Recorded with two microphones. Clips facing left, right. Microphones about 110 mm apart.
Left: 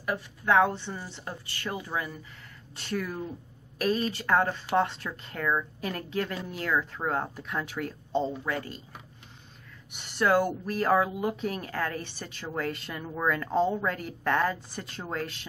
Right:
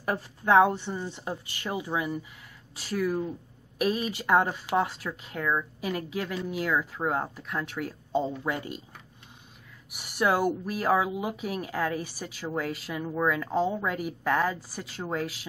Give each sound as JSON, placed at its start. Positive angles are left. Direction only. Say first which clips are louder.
{"t": 0.0, "sound": "a woman's voice", "louder": "right 2 dB", "side_deg": -30}
{"t": 0.7, "sound": "speech", "louder": "right 4 dB", "side_deg": -15}
{"t": 9.8, "sound": "speech", "louder": "even", "side_deg": -10}